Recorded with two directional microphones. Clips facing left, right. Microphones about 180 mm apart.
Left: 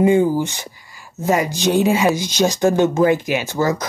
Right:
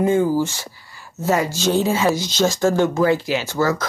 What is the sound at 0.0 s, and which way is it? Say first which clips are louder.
Speech: left 2 dB; 15° left (ahead or behind).